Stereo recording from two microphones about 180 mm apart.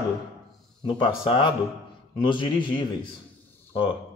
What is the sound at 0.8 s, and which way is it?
Speech, 30° left (ahead or behind).